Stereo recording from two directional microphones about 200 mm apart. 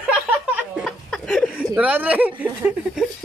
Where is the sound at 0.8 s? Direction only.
5° left (ahead or behind).